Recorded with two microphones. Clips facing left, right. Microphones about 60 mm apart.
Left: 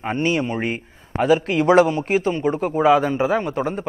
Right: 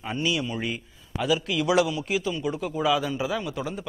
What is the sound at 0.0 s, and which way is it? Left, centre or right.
A man's voice, left.